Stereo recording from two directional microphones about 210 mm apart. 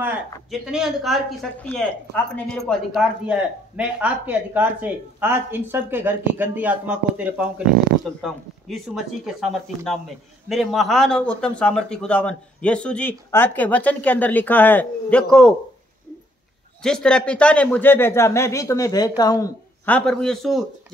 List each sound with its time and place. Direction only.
0.5 s speech: centre (ahead or behind)
16.8 s speech: 5° left (ahead or behind)
20.0 s speech: centre (ahead or behind)